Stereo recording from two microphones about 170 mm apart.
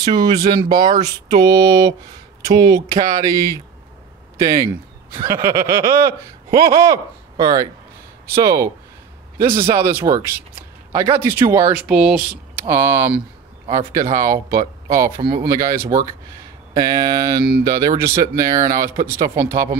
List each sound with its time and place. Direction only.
0.0 s speech: 25° right (ahead or behind)
9.7 s speech: 15° right (ahead or behind)
11.7 s speech: 5° right (ahead or behind)